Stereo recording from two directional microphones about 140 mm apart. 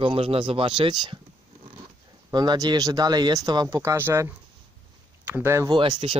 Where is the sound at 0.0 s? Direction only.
40° right (ahead or behind).